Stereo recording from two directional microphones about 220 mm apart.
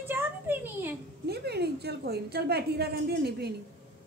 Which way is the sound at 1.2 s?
45° right (ahead or behind).